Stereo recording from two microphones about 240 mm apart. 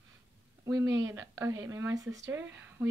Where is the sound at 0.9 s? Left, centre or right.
Centre.